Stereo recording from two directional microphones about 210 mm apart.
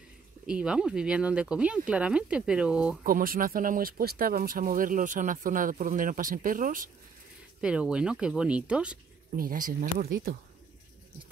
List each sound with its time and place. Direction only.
0.5 s speech: 5° right (ahead or behind)
3.0 s speech: 45° right (ahead or behind)
7.6 s speech: 5° right (ahead or behind)
9.3 s speech: 40° right (ahead or behind)